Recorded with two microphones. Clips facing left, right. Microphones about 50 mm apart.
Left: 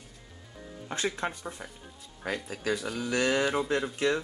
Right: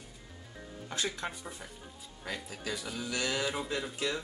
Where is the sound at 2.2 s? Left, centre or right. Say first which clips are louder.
Left 7 dB; left.